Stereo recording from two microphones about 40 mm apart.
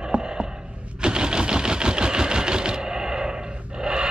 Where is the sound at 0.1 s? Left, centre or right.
Right.